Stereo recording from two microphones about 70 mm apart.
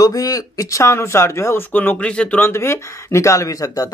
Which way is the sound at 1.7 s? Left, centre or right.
Left.